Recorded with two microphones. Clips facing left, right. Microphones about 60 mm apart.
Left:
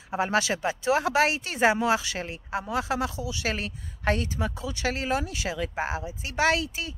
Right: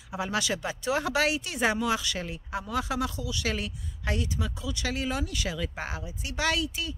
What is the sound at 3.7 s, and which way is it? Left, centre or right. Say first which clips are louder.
Speech: left 6 dB; left.